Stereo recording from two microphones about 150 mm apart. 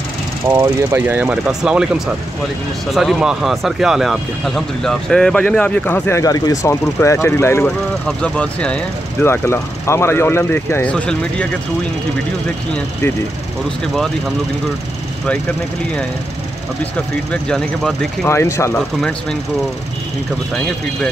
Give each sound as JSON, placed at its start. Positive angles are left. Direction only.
{"t": 0.5, "sound": "speech", "side_deg": -20}
{"t": 17.3, "sound": "speech", "side_deg": 5}
{"t": 18.2, "sound": "speech", "side_deg": 15}
{"t": 20.5, "sound": "speech", "side_deg": 5}